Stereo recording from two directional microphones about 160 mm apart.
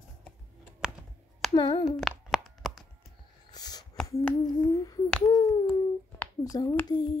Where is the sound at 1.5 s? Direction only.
35° left (ahead or behind).